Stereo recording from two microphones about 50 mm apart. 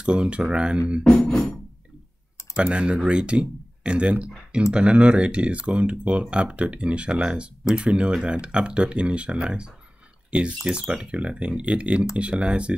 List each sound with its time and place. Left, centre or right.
0.0 s speech: right
1.0 s music: centre
2.5 s speech: centre
10.9 s speech: right